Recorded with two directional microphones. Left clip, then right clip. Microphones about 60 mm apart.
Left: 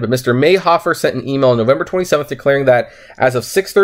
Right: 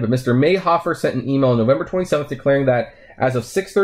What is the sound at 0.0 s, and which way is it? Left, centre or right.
Speech, left.